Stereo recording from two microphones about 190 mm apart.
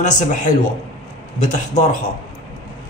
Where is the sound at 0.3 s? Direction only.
40° left (ahead or behind).